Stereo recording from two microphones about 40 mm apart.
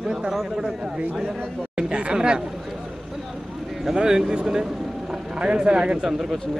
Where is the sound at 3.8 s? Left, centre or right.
Centre.